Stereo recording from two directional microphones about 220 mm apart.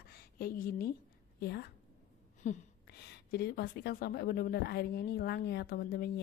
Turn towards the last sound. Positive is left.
turn(degrees=45)  # may be behind; listen again after turning